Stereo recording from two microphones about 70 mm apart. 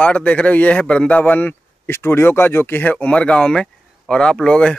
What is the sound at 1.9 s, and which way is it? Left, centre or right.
Speech, left.